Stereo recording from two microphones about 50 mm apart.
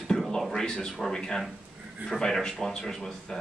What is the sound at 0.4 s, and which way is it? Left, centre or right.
Speech, centre.